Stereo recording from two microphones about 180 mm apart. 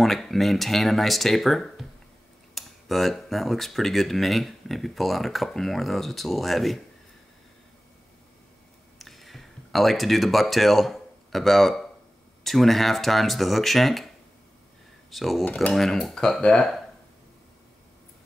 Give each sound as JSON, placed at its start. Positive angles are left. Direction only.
{"t": 0.0, "sound": "speech", "side_deg": 0}
{"t": 8.9, "sound": "a sound", "side_deg": 0}
{"t": 12.4, "sound": "speech", "side_deg": 0}
{"t": 15.0, "sound": "speech", "side_deg": 0}